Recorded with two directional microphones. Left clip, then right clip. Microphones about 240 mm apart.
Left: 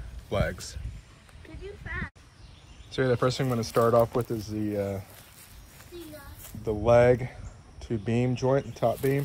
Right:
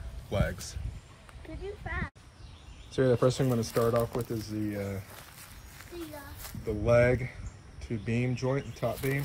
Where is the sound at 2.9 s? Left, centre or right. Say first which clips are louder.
Even; centre.